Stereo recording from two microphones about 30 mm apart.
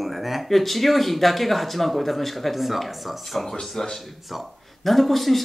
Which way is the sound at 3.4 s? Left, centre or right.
Centre.